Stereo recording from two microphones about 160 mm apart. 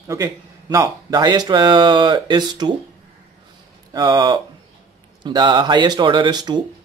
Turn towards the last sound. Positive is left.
turn(degrees=-25)  # may be behind; listen again after turning